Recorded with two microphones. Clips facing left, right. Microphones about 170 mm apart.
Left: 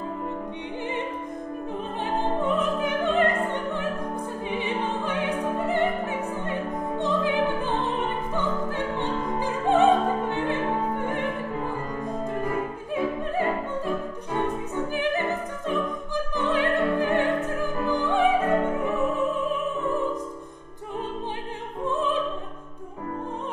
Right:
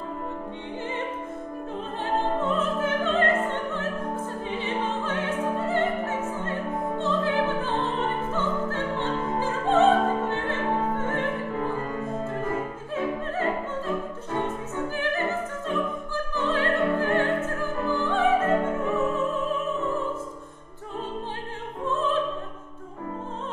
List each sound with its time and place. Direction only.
2.1 s music: 15° left (ahead or behind)
12.9 s opera: 15° left (ahead or behind)
16.3 s music: 15° left (ahead or behind)
21.8 s opera: 15° left (ahead or behind)